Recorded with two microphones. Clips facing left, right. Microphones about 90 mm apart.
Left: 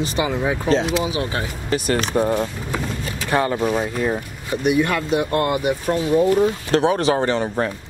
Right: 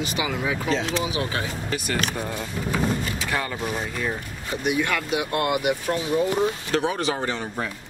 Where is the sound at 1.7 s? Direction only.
40° left (ahead or behind).